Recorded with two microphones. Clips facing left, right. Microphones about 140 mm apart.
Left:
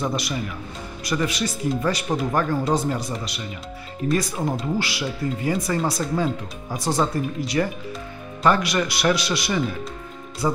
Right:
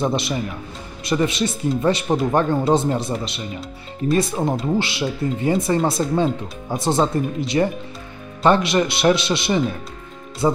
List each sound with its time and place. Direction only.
0.0 s speech: 25° right (ahead or behind)